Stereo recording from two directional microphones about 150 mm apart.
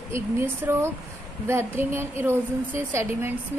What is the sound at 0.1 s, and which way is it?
A woman's voice, 15° right (ahead or behind).